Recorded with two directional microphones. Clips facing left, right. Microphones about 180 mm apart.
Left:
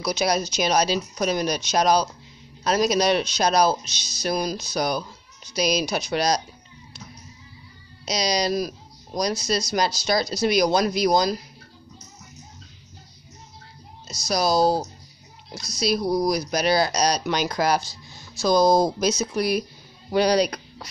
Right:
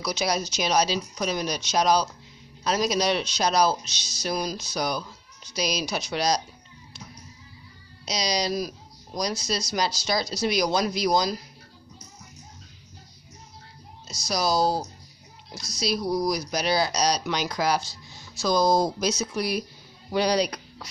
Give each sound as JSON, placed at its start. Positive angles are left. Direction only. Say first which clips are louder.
{"t": 0.0, "sound": "speech", "louder": "left 4 dB", "side_deg": 55}
{"t": 8.0, "sound": "speech", "louder": "left 3 dB", "side_deg": 55}
{"t": 14.0, "sound": "speech", "louder": "left 3 dB", "side_deg": 55}